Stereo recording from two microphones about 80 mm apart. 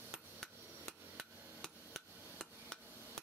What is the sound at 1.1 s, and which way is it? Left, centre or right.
Hammer, centre.